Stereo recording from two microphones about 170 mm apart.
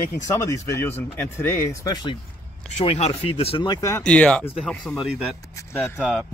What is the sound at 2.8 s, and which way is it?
Speech, 35° left (ahead or behind).